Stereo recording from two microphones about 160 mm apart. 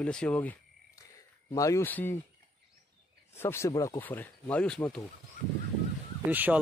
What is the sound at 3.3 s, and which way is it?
Speech, 15° left (ahead or behind).